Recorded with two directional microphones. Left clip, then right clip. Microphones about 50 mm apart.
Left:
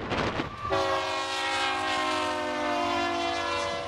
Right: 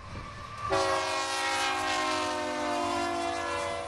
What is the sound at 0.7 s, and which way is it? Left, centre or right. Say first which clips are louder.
Train: left 1 dB; centre.